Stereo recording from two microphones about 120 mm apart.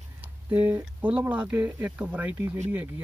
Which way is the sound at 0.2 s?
15° right (ahead or behind).